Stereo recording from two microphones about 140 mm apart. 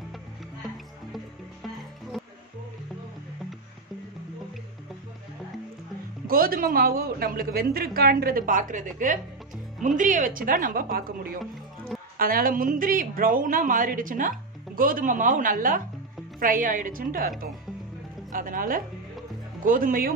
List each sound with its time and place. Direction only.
6.2 s a woman's voice: 90° right
12.2 s a woman's voice: 90° right
16.3 s a woman's voice: 75° right (ahead or behind); by 17.3 s 90° right
18.3 s a woman's voice: 80° right